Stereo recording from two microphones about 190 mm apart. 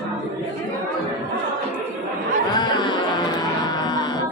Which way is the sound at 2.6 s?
25° left (ahead or behind).